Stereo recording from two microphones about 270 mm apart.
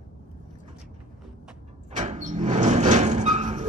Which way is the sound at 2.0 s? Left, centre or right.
Right.